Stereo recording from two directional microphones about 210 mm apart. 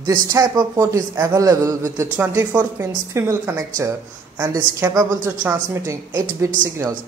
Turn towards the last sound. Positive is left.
turn(degrees=-15)  # may be behind; listen again after turning